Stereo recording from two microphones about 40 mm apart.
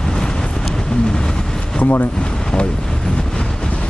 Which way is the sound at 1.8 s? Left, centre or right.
Left.